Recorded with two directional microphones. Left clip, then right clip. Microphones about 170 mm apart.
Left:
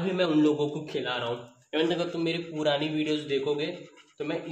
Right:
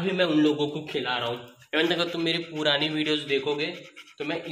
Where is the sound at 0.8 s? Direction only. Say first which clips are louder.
Right 2 dB; 20° right (ahead or behind).